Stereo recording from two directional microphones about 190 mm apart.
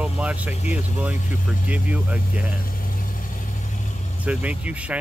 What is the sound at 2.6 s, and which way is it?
Vehicle, 50° left (ahead or behind).